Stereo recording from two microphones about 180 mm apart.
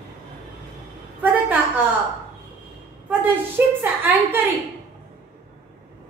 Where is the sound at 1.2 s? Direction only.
10° right (ahead or behind).